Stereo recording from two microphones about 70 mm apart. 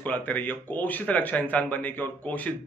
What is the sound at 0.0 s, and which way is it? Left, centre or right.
Speech, left.